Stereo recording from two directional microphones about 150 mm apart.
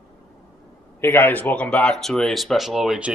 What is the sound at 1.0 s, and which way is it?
Speech, 15° left (ahead or behind).